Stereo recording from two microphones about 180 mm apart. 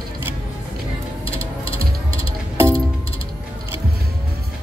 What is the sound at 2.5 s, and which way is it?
Music, 15° right (ahead or behind).